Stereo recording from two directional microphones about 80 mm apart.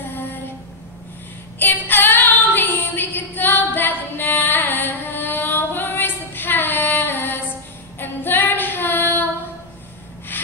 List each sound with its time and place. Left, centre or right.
1.6 s female singing: left
10.3 s gasp: left